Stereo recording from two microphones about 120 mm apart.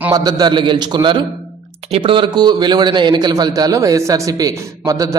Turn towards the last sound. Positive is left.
turn(degrees=-30)  # may be behind; listen again after turning